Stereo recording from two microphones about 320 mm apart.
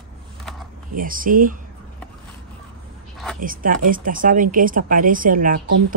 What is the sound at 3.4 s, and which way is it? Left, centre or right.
Speech, right.